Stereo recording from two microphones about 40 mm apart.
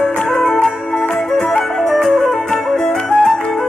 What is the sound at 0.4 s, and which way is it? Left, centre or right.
Music, centre.